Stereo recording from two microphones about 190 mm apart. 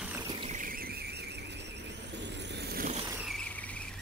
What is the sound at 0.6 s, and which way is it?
Squeal, 50° right (ahead or behind).